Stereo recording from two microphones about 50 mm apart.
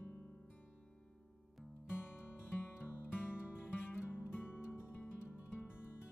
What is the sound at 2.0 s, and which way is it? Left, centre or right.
Music, left.